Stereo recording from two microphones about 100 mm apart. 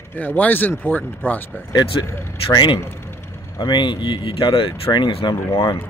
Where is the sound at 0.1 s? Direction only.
20° left (ahead or behind).